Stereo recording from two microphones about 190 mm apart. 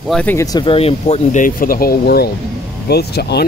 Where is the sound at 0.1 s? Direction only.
10° left (ahead or behind).